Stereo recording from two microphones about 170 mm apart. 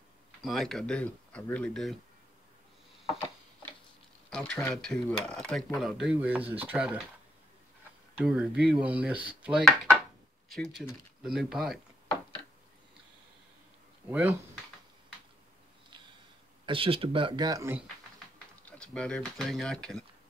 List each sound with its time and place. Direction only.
0.4 s speech: centre (ahead or behind)
4.3 s speech: 5° left (ahead or behind)
8.2 s speech: 5° right (ahead or behind)
14.0 s speech: 10° right (ahead or behind)
16.6 s speech: 30° right (ahead or behind)
18.7 s speech: 5° left (ahead or behind)